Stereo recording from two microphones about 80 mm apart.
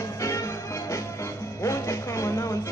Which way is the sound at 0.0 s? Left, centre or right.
Left.